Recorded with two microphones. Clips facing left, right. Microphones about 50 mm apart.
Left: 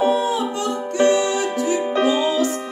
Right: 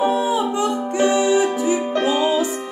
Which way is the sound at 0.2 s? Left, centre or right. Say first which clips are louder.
Right 2 dB; centre.